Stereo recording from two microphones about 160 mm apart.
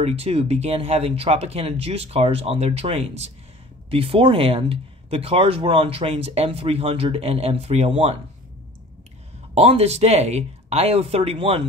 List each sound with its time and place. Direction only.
0.0 s speech: 40° right (ahead or behind)
9.5 s speech: 40° right (ahead or behind)